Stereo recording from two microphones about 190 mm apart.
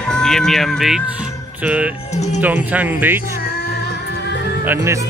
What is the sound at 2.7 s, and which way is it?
Speech, 10° right (ahead or behind).